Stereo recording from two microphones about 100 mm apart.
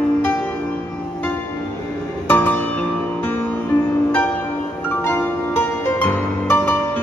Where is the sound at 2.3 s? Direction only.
20° left (ahead or behind).